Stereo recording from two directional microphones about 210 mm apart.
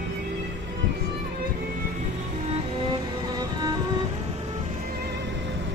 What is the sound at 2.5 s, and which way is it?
Music, 20° right (ahead or behind).